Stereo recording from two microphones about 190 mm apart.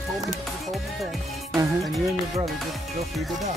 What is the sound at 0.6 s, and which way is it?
Music, centre (ahead or behind).